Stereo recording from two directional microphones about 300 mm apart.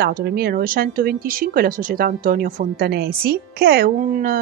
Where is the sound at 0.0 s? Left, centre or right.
Right.